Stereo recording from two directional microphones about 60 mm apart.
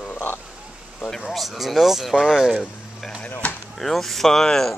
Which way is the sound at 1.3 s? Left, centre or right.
Centre.